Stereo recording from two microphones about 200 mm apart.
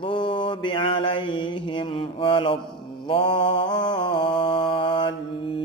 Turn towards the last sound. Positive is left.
turn(degrees=25)  # may be behind; listen again after turning